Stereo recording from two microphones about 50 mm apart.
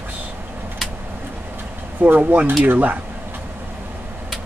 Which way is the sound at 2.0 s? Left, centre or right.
Right.